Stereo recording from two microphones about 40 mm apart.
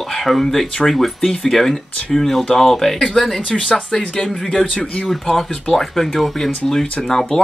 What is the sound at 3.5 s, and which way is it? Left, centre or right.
Speech, centre.